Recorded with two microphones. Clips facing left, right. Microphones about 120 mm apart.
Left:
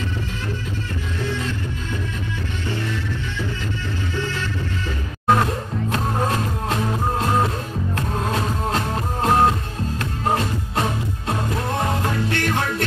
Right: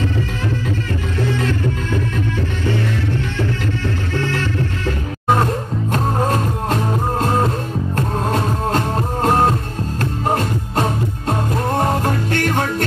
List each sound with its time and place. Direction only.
5.9 s music: 40° right (ahead or behind)
11.2 s music: 45° right (ahead or behind)